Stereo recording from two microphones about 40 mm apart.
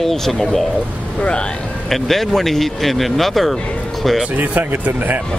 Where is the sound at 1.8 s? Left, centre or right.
Centre.